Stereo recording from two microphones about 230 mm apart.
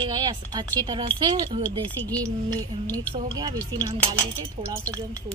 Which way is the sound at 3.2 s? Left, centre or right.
Centre.